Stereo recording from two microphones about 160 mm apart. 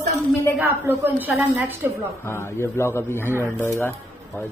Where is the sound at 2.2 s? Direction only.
15° left (ahead or behind).